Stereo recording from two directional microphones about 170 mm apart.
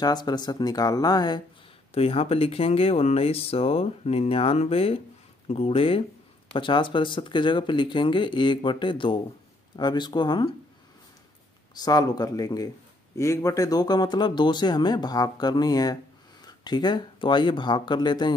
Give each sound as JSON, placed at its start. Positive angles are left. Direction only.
{"t": 0.0, "sound": "a man's voice", "side_deg": 25}
{"t": 2.0, "sound": "a man's voice", "side_deg": 35}
{"t": 11.7, "sound": "a man's voice", "side_deg": 25}